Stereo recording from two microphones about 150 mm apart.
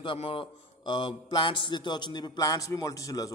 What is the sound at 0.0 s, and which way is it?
A man's voice, 35° left (ahead or behind).